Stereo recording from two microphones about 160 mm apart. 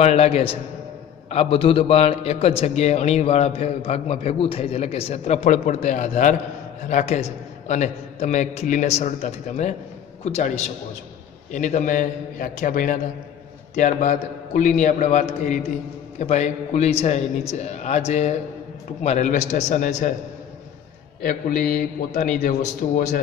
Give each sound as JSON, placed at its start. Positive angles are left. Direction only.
{"t": 0.0, "sound": "a man's voice", "side_deg": 40}
{"t": 21.2, "sound": "a man's voice", "side_deg": 60}